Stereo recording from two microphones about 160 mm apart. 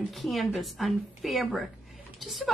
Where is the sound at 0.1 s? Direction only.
Centre (ahead or behind).